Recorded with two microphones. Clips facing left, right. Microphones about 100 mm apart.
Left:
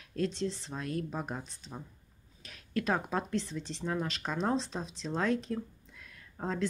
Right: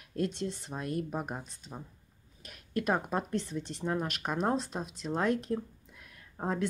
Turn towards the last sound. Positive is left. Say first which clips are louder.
# right 1 dB
turn(degrees=-15)  # may be behind; listen again after turning